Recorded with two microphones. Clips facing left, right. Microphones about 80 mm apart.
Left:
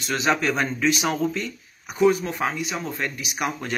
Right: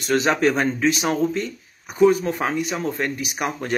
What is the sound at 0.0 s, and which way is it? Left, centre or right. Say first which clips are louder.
Speech: right 4 dB; right.